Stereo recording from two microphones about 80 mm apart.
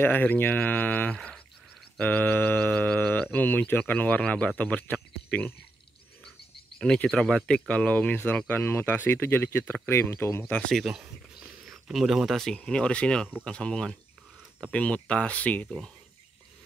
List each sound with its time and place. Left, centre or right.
0.0 s speech: left
6.7 s speech: centre; by 10.4 s left
10.7 s speech: centre